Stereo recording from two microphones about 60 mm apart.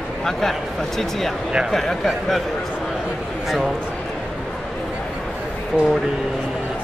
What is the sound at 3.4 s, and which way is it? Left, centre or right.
Speech, centre.